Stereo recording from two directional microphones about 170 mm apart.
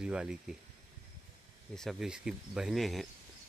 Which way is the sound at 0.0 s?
5° right (ahead or behind).